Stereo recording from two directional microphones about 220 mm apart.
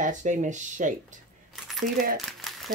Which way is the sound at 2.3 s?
Centre (ahead or behind).